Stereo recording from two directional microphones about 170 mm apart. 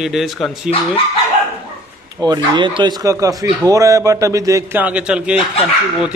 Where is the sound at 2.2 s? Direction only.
25° right (ahead or behind).